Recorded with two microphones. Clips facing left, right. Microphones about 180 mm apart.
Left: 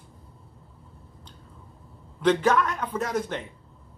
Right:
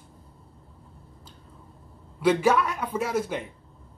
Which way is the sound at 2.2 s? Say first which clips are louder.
Even; 10° right (ahead or behind).